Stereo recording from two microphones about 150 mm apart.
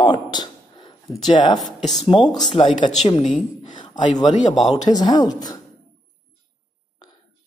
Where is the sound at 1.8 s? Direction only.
30° left (ahead or behind).